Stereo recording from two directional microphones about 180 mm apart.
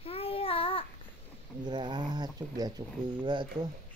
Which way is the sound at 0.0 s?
35° left (ahead or behind).